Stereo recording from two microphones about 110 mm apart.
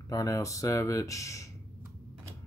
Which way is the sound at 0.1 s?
30° left (ahead or behind).